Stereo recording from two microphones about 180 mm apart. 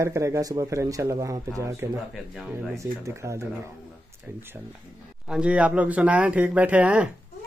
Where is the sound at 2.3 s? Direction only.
Centre (ahead or behind).